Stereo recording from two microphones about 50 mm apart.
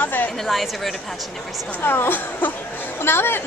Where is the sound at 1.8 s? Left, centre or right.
Left.